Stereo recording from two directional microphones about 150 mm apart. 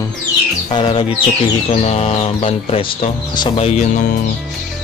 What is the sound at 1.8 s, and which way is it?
Speech, 45° left (ahead or behind).